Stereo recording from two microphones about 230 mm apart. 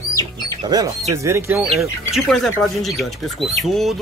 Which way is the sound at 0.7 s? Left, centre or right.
Centre.